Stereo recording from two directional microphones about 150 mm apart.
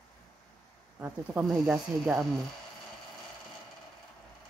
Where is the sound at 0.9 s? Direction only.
15° right (ahead or behind).